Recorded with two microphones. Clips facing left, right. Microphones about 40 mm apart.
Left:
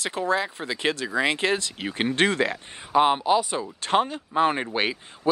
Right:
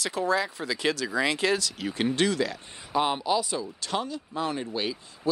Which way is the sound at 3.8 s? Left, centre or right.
Left.